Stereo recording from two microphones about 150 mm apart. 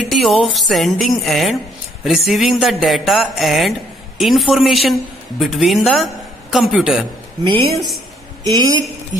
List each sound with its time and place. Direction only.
0.1 s a woman's voice: centre (ahead or behind)
7.4 s a woman's voice: 35° right (ahead or behind)
8.5 s a woman's voice: 25° right (ahead or behind)